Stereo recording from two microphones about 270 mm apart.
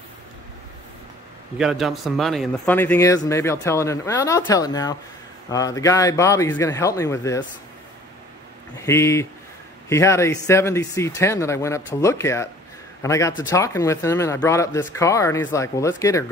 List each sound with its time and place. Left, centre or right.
1.6 s speech: centre
8.7 s speech: centre